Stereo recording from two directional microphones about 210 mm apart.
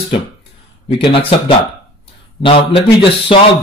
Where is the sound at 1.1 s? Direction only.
25° left (ahead or behind).